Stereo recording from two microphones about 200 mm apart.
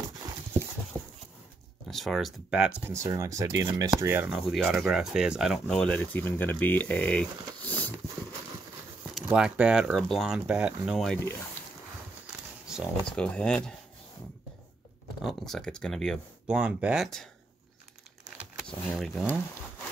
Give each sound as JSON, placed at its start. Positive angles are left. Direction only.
{"t": 1.0, "sound": "dog", "side_deg": -25}
{"t": 1.9, "sound": "speech", "side_deg": 0}
{"t": 9.1, "sound": "speech", "side_deg": -5}
{"t": 12.6, "sound": "speech", "side_deg": 0}
{"t": 15.2, "sound": "speech", "side_deg": 0}
{"t": 18.6, "sound": "speech", "side_deg": 0}